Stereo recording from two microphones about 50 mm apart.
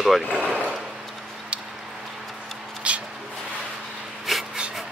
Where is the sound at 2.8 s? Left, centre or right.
Right.